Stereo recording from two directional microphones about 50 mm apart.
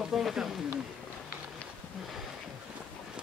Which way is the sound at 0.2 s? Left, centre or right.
Centre.